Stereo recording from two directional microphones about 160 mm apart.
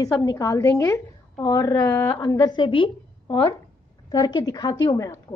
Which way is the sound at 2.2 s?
25° left (ahead or behind).